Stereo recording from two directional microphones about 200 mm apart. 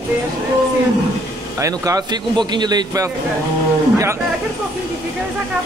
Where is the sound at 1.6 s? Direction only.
15° right (ahead or behind).